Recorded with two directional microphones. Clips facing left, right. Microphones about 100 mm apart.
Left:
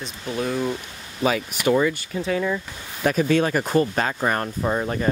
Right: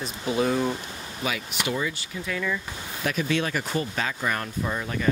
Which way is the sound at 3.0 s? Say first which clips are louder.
Left 7 dB; 40° left (ahead or behind).